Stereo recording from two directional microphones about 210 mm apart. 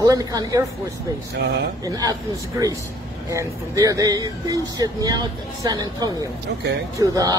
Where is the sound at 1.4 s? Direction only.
55° right (ahead or behind).